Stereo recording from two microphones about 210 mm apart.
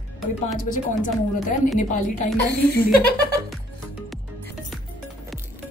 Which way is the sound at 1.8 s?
35° left (ahead or behind).